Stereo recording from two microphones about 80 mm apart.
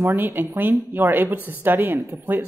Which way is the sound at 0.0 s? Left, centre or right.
Right.